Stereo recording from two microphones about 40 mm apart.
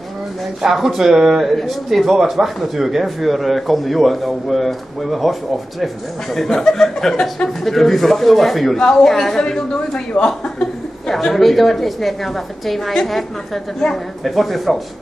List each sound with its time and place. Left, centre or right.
0.6 s speech: centre
6.5 s a woman's voice: centre
11.1 s speech: centre
14.2 s speech: centre